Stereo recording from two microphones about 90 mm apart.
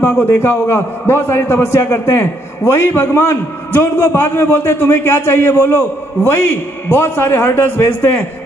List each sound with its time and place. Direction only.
0.0 s a man's voice: 30° left (ahead or behind)